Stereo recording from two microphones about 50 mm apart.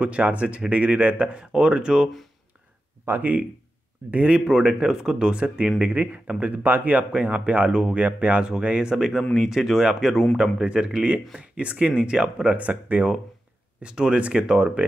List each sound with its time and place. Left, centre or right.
0.0 s speech: right
3.2 s speech: right
4.5 s speech: centre
12.5 s speech: right
13.7 s speech: centre